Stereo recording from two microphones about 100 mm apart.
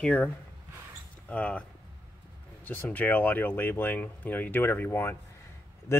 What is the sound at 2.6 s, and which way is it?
Speech, 15° left (ahead or behind).